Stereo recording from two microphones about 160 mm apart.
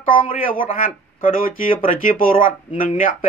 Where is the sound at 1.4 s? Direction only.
60° left (ahead or behind).